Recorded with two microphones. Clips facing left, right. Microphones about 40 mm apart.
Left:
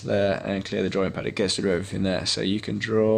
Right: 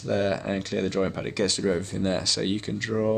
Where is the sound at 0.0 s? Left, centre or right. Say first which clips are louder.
Left 2 dB; centre.